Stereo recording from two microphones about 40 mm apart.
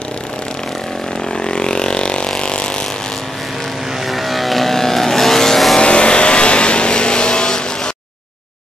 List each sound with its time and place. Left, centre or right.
1.4 s vehicle: left
4.1 s vehicle: centre
5.8 s vehicle: left